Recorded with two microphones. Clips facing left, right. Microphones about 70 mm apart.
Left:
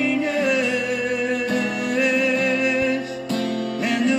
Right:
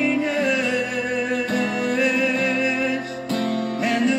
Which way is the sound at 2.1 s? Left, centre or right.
Right.